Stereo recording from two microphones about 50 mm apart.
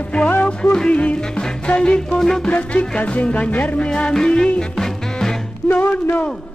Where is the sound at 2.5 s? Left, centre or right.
Left.